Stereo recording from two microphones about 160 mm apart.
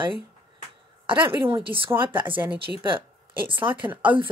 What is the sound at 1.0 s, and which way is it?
Speech, 35° right (ahead or behind).